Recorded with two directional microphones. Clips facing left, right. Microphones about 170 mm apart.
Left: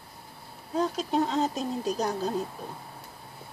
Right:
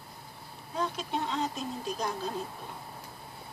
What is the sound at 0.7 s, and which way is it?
Speech, 40° left (ahead or behind).